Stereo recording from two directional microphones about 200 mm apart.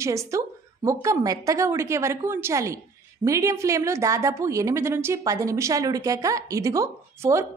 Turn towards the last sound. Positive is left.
turn(degrees=-15)  # may be behind; listen again after turning